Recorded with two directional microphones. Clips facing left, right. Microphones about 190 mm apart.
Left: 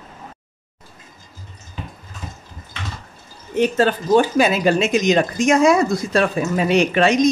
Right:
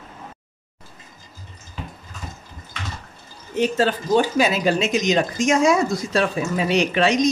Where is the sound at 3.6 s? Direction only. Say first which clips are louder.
Left 3 dB; 55° left (ahead or behind).